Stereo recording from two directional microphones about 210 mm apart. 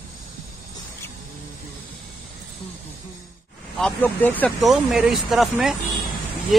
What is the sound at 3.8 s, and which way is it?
Speech, 10° left (ahead or behind).